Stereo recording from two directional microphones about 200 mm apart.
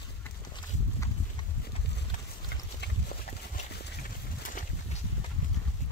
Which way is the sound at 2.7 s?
50° left (ahead or behind).